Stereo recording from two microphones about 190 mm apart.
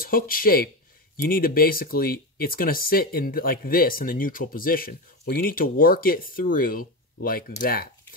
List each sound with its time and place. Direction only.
0.0 s speech: 50° left (ahead or behind)